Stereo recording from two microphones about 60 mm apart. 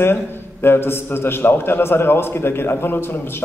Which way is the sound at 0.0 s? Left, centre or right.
Left.